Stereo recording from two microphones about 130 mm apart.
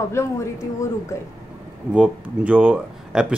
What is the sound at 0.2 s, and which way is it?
Speech, 20° left (ahead or behind).